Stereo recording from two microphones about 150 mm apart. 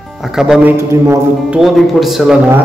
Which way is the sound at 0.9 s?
15° right (ahead or behind).